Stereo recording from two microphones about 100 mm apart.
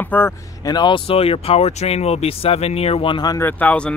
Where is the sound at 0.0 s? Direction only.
20° left (ahead or behind).